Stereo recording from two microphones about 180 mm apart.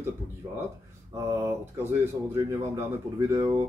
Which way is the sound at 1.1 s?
15° right (ahead or behind).